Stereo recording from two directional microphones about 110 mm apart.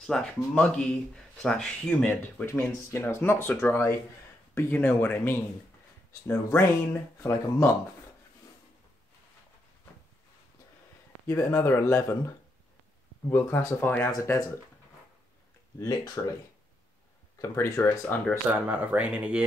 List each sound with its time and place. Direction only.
0.0 s speech: 5° left (ahead or behind)
2.4 s speech: 25° left (ahead or behind)
11.2 s speech: 25° left (ahead or behind)
13.3 s speech: 25° left (ahead or behind)
15.8 s speech: 30° left (ahead or behind)
17.4 s speech: 30° left (ahead or behind)
18.5 s speech: 15° right (ahead or behind)